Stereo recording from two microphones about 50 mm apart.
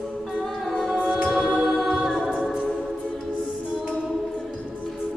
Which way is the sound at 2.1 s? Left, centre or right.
Centre.